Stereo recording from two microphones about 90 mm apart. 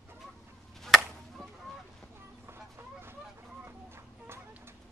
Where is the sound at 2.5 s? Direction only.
25° right (ahead or behind).